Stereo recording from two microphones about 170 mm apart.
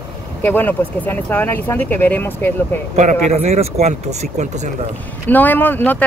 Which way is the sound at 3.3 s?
40° right (ahead or behind).